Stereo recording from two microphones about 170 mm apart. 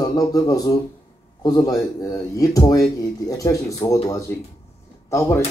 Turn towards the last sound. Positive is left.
turn(degrees=15)  # may be behind; listen again after turning